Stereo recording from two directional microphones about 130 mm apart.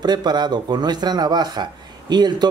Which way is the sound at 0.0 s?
35° right (ahead or behind).